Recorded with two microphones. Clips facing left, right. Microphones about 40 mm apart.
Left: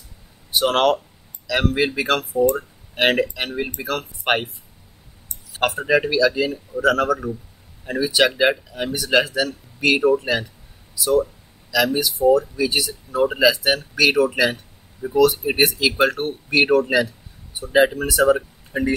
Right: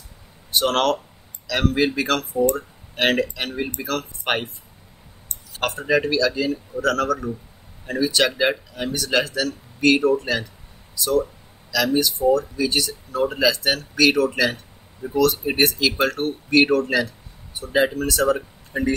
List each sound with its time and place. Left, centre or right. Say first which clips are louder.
0.5 s speech: left 2 dB; centre
5.5 s speech: left 2 dB; centre